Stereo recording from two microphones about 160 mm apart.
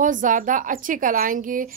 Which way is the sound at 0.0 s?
55° right (ahead or behind).